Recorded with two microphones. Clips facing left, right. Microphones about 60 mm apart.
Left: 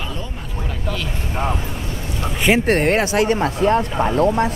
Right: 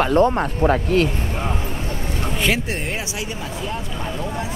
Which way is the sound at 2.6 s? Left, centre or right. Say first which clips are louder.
Left 10 dB; left.